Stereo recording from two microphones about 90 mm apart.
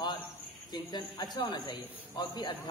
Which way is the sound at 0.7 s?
50° left (ahead or behind).